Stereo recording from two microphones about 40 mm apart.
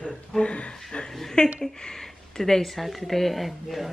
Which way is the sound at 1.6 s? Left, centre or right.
Centre.